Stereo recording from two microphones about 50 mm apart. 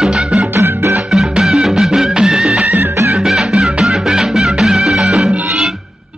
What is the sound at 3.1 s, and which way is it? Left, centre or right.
Music, centre.